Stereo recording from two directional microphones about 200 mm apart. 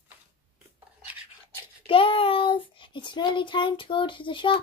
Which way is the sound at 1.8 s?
25° left (ahead or behind).